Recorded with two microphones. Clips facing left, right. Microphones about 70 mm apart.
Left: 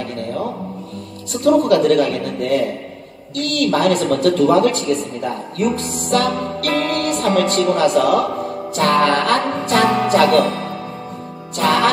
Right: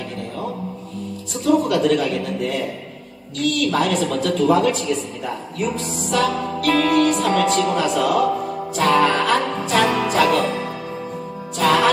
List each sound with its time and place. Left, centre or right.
1.3 s speech: left